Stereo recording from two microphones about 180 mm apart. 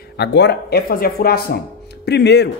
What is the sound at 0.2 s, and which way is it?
Speech, 70° left (ahead or behind).